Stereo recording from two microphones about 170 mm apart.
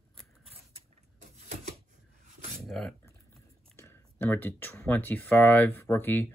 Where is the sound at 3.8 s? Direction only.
15° left (ahead or behind).